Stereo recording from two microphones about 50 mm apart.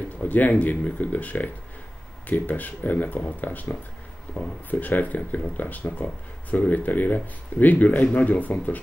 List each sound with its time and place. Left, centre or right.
0.2 s speech: left